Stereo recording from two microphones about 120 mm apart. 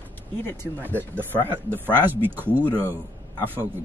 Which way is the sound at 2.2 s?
15° right (ahead or behind).